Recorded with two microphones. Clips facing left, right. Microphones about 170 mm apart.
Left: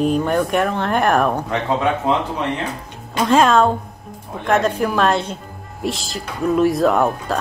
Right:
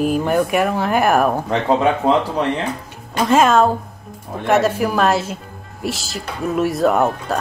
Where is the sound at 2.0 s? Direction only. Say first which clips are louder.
Right 4 dB; 35° right (ahead or behind).